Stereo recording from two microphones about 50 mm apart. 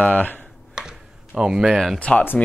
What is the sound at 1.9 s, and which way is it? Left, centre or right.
Speech, left.